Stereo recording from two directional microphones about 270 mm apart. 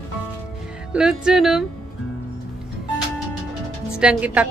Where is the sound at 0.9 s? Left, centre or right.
Centre.